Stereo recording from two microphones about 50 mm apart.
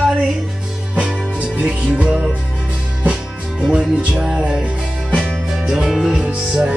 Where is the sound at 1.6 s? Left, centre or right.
Right.